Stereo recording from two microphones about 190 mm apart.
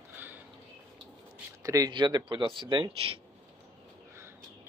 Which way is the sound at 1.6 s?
20° right (ahead or behind).